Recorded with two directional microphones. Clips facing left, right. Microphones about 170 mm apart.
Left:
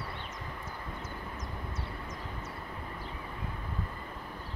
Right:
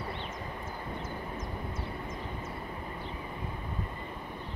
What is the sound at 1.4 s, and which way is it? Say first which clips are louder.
Vehicle: right 3 dB; 50° right (ahead or behind).